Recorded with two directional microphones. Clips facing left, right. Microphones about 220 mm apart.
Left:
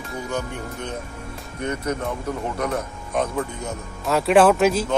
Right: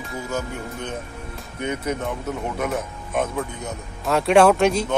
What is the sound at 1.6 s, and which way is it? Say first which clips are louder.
Speech: even; 5° right (ahead or behind).